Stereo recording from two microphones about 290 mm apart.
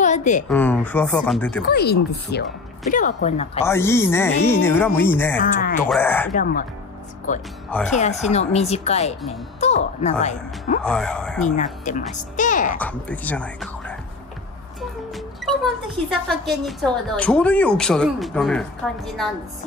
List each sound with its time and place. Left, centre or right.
0.0 s a woman's voice: left
0.5 s speech: centre
1.7 s speech: left
3.6 s speech: centre
5.4 s speech: left
5.8 s speech: centre
6.3 s speech: left
10.8 s speech: centre
11.4 s speech: left
12.7 s speech: centre